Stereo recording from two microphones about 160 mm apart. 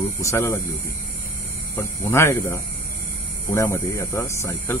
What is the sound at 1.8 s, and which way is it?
Speech, 20° left (ahead or behind).